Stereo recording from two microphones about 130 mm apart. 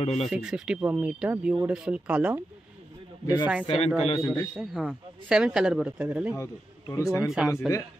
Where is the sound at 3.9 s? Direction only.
50° left (ahead or behind).